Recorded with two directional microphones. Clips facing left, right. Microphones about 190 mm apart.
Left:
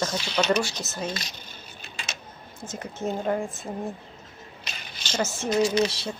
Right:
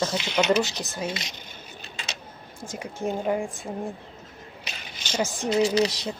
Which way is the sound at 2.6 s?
10° right (ahead or behind).